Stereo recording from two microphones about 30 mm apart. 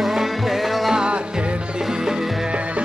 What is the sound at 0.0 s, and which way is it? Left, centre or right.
Music, centre.